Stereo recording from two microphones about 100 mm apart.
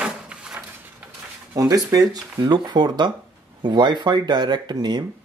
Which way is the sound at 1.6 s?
35° right (ahead or behind).